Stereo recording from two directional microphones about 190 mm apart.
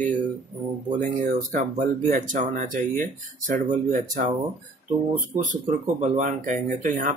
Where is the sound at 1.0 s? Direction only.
50° right (ahead or behind).